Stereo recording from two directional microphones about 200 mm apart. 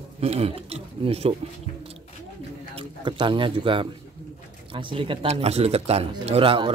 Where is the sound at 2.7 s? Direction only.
25° right (ahead or behind).